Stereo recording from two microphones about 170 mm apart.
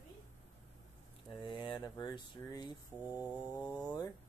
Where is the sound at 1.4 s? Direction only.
30° left (ahead or behind).